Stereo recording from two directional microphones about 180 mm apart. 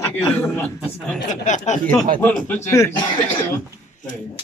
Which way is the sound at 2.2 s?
10° left (ahead or behind).